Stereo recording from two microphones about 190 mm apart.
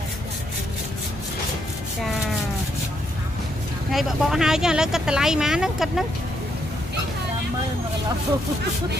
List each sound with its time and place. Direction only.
3.9 s speech: centre (ahead or behind)